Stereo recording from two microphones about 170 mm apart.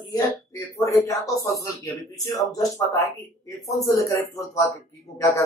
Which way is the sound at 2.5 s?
20° left (ahead or behind).